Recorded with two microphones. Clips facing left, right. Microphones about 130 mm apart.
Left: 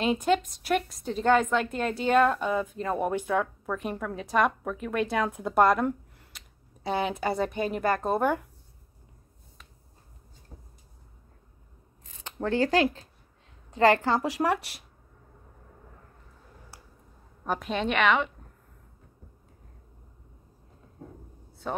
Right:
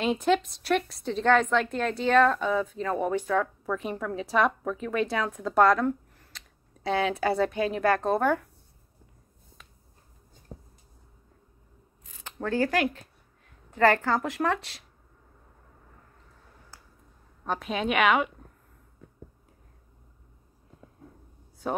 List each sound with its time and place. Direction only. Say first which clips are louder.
0.0 s a woman's voice: even; centre (ahead or behind)
12.2 s speech: left 1 dB; 20° left (ahead or behind)
13.7 s a woman's voice: left 1 dB; 20° left (ahead or behind)
17.5 s a woman's voice: even; centre (ahead or behind)
21.6 s speech: right 2 dB; 10° right (ahead or behind)